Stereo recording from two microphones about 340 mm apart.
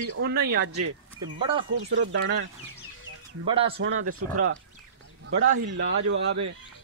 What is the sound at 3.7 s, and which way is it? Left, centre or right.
Speech, right.